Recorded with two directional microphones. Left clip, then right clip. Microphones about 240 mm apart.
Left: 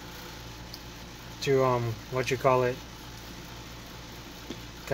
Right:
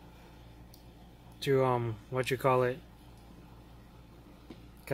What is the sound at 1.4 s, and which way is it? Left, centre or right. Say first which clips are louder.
Speech: left 3 dB; right.